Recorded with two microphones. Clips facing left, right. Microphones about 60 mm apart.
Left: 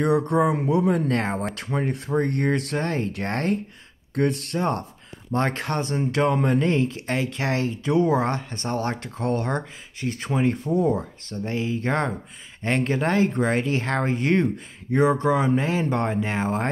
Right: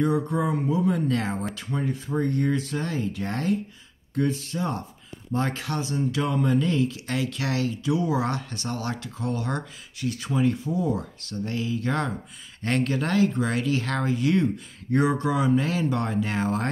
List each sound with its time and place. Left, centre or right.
0.0 s speech: left
8.3 s speech: left
9.5 s speech: left
10.6 s speech: left
11.0 s speech: left
14.9 s speech: left